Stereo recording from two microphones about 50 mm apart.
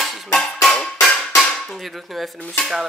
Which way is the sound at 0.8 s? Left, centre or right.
Centre.